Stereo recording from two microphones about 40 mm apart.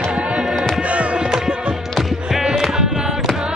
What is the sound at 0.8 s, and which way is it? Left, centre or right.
Music, right.